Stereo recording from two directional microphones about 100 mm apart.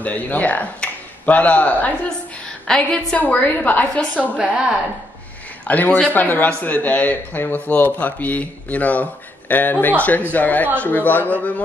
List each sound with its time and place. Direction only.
0.0 s speech: 15° left (ahead or behind)
4.4 s a woman's voice: 10° right (ahead or behind)
5.7 s speech: 15° left (ahead or behind)